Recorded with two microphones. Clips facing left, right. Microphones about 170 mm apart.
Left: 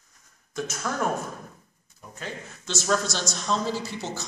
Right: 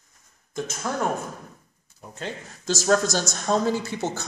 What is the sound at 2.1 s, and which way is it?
Speech, 35° right (ahead or behind).